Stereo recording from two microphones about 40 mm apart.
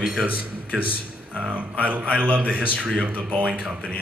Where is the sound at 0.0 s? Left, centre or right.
Centre.